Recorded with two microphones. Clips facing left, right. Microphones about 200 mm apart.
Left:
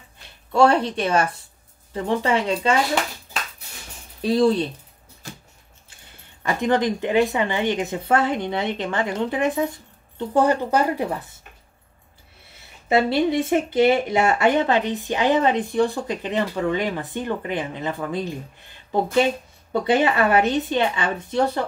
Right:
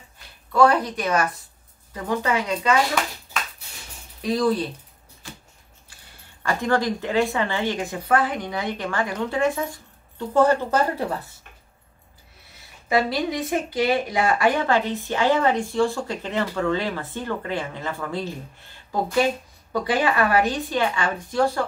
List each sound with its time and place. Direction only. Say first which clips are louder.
0.5 s speech: left 1 dB; 25° left (ahead or behind)
6.4 s speech: left 2 dB; 20° left (ahead or behind)
12.8 s speech: left 3 dB; 25° left (ahead or behind)